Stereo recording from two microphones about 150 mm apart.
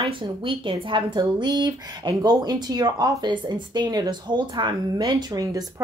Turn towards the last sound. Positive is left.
turn(degrees=-25)  # may be behind; listen again after turning